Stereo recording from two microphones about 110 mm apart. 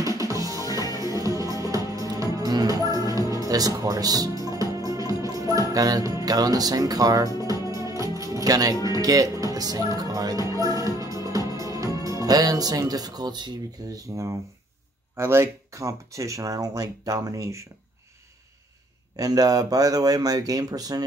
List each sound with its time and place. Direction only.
0.0 s music: 30° right (ahead or behind)
8.7 s music: 35° left (ahead or behind)
9.0 s speech: 30° right (ahead or behind)
10.5 s music: 30° right (ahead or behind)
13.9 s speech: 30° right (ahead or behind)
19.1 s speech: 35° right (ahead or behind)